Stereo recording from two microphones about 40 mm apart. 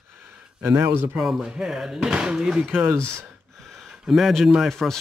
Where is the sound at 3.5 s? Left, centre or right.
Centre.